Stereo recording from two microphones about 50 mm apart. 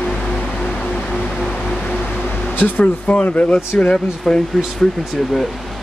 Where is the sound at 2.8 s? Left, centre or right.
Left.